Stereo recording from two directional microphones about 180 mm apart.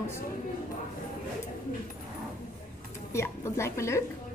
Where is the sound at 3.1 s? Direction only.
15° left (ahead or behind).